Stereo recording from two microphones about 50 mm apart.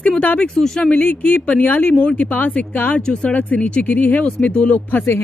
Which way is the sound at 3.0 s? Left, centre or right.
Centre.